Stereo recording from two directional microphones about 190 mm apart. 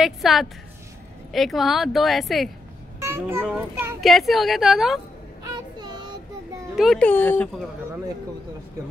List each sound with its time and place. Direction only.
0.0 s speech: centre (ahead or behind)
3.0 s a child's voice: 10° right (ahead or behind)
5.8 s child singing: 25° right (ahead or behind)
6.7 s a child's voice: centre (ahead or behind)